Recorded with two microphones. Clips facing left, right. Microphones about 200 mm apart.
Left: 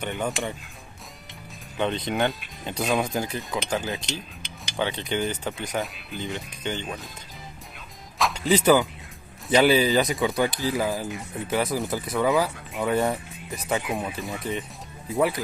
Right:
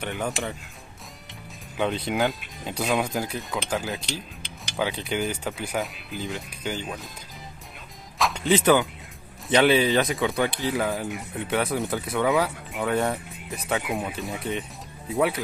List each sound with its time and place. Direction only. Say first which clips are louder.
0.0 s speech: left 1 dB; 5° right (ahead or behind)
1.8 s speech: even; 5° right (ahead or behind)
8.2 s music: even; centre (ahead or behind)
9.5 s speech: even; centre (ahead or behind)